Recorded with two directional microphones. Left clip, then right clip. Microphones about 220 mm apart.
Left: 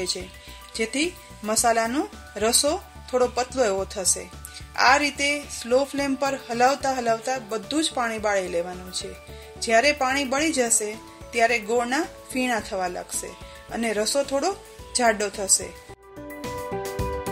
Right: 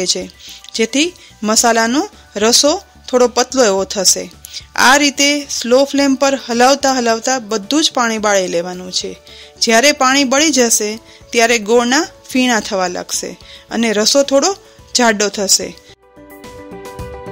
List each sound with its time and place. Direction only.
0.7 s speech: 45° right (ahead or behind)